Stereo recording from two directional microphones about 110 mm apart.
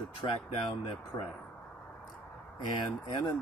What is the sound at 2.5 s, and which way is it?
Speech, 45° left (ahead or behind).